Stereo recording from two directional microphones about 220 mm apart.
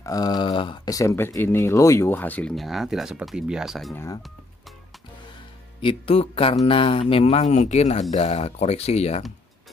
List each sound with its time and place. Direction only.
0.0 s speech: 15° left (ahead or behind); by 3.9 s centre (ahead or behind)
3.9 s speech: 15° left (ahead or behind)
5.8 s speech: 25° left (ahead or behind)